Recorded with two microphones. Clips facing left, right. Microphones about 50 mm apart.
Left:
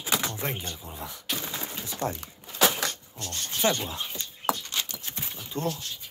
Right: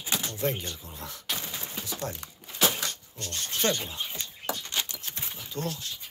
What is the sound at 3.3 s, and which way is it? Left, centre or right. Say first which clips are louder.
Speech: left 2 dB; centre.